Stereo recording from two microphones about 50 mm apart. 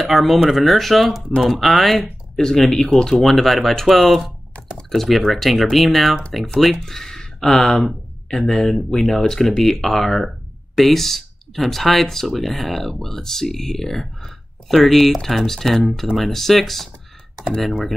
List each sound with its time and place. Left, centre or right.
0.0 s speech: centre